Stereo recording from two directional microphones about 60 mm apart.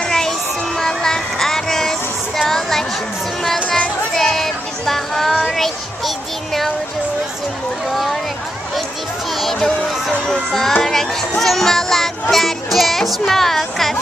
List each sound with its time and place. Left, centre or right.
0.0 s child singing: centre
3.6 s music: left
4.2 s music: centre
7.9 s a sound: centre
9.4 s music: centre
9.8 s a sound: centre
10.8 s speech: centre